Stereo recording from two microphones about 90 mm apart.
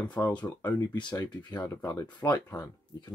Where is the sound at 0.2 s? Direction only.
30° left (ahead or behind).